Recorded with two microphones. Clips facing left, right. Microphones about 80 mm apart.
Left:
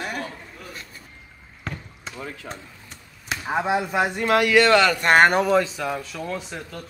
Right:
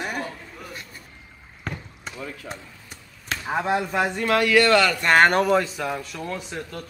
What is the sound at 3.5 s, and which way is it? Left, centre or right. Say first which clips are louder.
A man's voice: left 1 dB; centre.